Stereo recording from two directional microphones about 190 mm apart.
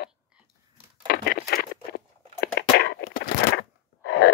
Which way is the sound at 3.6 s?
85° left.